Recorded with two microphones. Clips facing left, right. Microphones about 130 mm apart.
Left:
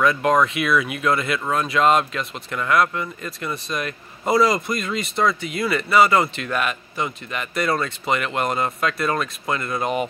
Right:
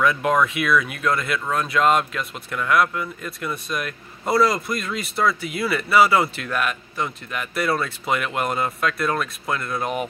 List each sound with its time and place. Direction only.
0.0 s speech: 5° right (ahead or behind)